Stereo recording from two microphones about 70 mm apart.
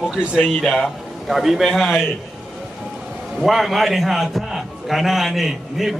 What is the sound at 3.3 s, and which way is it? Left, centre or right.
A man's voice, centre.